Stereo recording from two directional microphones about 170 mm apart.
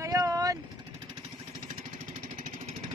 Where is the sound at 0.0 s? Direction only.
20° right (ahead or behind).